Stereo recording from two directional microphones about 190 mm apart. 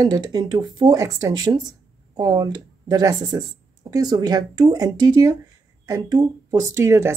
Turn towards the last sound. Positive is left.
turn(degrees=-15)  # may be behind; listen again after turning